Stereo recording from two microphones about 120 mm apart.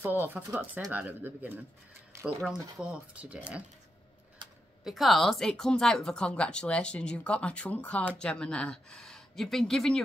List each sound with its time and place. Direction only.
0.2 s speech: 15° right (ahead or behind)
2.2 s speech: 5° right (ahead or behind)
4.8 s speech: centre (ahead or behind)